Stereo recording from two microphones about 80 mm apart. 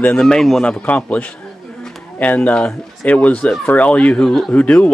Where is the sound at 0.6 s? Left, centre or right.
Centre.